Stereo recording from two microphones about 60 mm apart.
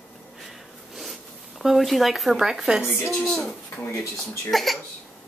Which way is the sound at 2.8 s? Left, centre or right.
Left.